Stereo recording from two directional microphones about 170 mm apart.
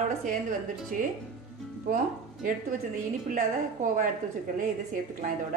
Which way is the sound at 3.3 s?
55° right (ahead or behind).